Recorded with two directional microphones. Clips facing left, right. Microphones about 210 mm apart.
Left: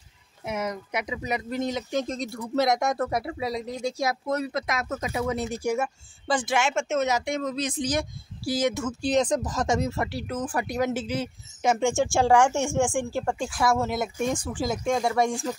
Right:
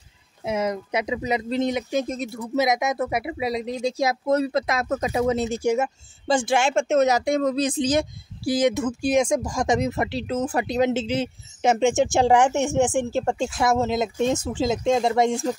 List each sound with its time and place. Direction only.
0.5 s speech: 25° right (ahead or behind)